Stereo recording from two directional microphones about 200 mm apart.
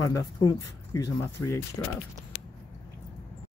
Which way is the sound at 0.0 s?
15° left (ahead or behind).